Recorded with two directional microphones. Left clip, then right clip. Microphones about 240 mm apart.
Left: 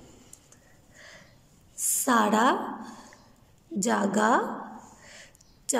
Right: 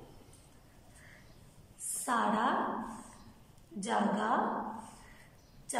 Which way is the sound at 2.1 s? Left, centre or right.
Left.